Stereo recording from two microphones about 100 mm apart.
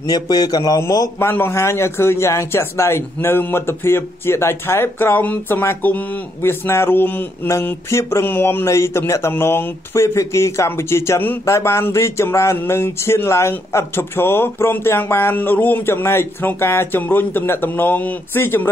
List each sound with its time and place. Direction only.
0.0 s speech: 40° left (ahead or behind)
1.3 s a man's voice: 25° left (ahead or behind)